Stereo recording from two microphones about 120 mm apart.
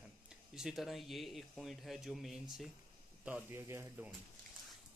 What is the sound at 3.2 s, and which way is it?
Speech, 15° right (ahead or behind).